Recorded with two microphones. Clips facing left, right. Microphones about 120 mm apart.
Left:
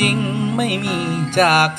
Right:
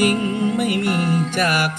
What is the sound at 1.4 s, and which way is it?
Music, 65° left (ahead or behind).